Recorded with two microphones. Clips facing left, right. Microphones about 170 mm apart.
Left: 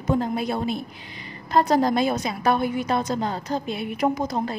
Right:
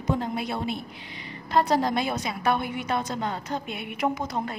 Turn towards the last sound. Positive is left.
turn(degrees=35)  # may be behind; listen again after turning